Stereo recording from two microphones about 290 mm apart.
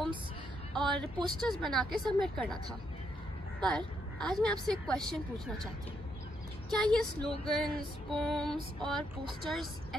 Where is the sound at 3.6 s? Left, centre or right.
Centre.